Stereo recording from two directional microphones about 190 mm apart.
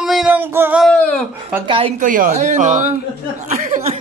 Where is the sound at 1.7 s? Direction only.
30° right (ahead or behind).